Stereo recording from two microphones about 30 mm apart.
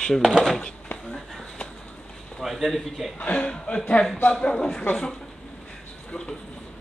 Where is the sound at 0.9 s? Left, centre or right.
Left.